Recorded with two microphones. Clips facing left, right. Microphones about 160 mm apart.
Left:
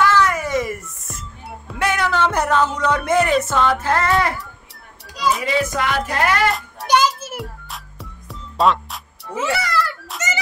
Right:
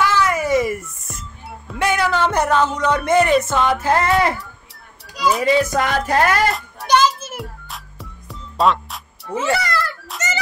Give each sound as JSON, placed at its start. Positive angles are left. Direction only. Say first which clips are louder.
{"t": 0.0, "sound": "music", "louder": "left 1 dB", "side_deg": -5}
{"t": 3.5, "sound": "music", "louder": "right 1 dB", "side_deg": -10}
{"t": 5.4, "sound": "music", "louder": "right 4 dB", "side_deg": -40}
{"t": 6.9, "sound": "music", "louder": "right 1 dB", "side_deg": 10}